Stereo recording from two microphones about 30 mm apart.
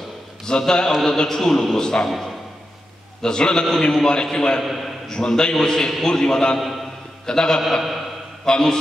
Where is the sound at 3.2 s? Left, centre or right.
Left.